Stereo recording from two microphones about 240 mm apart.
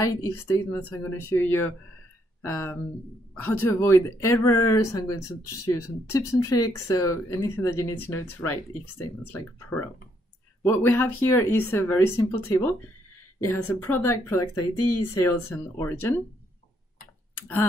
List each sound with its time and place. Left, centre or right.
0.5 s speech: centre
14.6 s speech: left
15.1 s speech: centre
17.4 s speech: centre